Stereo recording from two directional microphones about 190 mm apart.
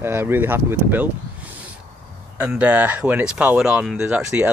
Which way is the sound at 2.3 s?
5° right (ahead or behind).